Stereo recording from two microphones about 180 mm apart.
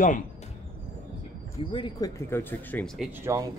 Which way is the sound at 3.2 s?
15° right (ahead or behind).